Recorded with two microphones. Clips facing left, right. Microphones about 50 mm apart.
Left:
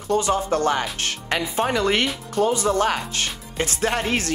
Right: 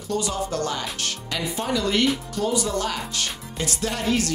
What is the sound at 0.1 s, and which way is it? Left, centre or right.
Speech, left.